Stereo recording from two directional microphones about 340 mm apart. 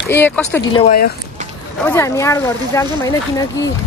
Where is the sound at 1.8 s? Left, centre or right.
Centre.